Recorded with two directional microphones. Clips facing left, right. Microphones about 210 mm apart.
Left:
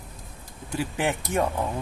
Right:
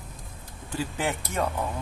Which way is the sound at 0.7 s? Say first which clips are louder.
Left 3 dB; 15° left (ahead or behind).